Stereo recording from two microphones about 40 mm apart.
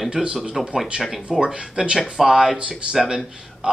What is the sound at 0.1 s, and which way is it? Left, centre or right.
Speech, centre.